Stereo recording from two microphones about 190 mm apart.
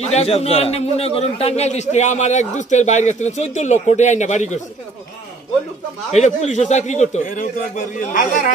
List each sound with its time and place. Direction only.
0.0 s a man's voice: 35° left (ahead or behind)
6.1 s a man's voice: 40° left (ahead or behind)